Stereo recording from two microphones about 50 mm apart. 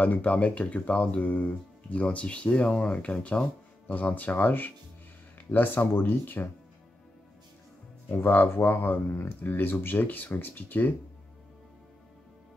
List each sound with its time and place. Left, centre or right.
0.0 s speech: left
8.1 s speech: left